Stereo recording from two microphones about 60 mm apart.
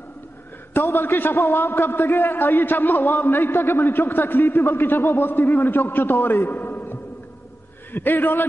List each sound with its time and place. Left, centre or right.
0.8 s a man's voice: left
6.5 s a sound: left
7.9 s a man's voice: left